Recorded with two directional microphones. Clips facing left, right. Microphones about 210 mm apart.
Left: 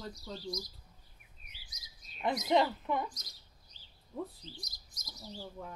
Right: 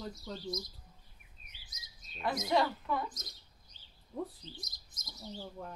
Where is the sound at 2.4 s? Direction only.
20° left (ahead or behind).